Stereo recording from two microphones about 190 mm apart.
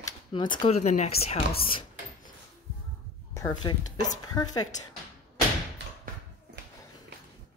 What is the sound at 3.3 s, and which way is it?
A woman's voice, 20° left (ahead or behind).